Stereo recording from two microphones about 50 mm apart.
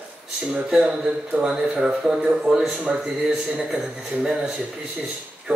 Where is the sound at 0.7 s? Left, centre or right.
Centre.